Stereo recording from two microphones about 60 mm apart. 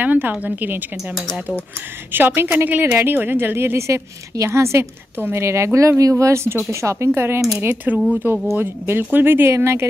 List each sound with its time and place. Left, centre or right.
0.0 s a woman's voice: right
2.1 s a woman's voice: right
7.1 s a woman's voice: right
8.1 s a woman's voice: right
9.5 s speech: right